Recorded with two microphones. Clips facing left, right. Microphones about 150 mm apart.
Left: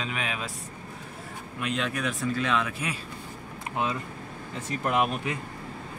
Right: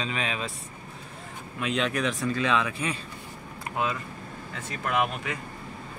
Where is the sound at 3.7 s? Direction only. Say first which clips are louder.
Even; 25° left (ahead or behind).